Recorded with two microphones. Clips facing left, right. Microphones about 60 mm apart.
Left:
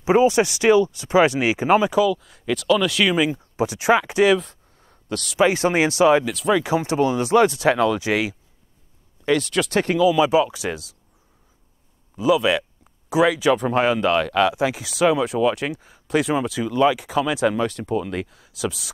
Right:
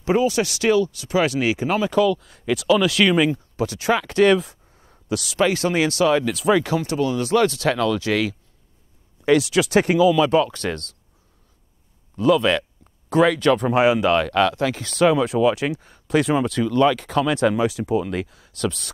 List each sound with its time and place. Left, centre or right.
0.0 s speech: left
2.0 s speech: centre
3.5 s speech: centre
4.3 s a sound: centre
5.4 s speech: left
6.2 s speech: centre
6.6 s speech: left
9.2 s speech: centre
10.1 s speech: centre
12.2 s speech: centre
14.5 s speech: centre